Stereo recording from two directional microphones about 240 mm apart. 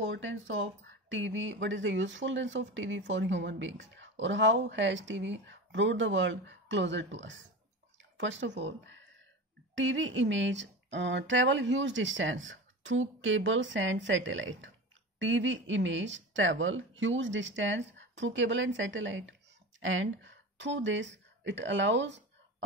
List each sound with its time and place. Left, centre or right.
0.0 s speech: right